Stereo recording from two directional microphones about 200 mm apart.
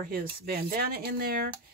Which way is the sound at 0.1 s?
45° right (ahead or behind).